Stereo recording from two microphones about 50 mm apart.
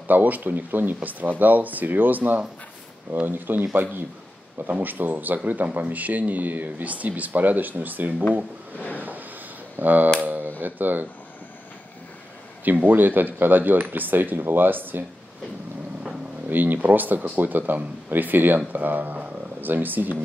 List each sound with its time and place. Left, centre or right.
0.1 s speech: right
8.7 s a sound: left
9.8 s speech: right
12.8 s speech: right
16.4 s speech: right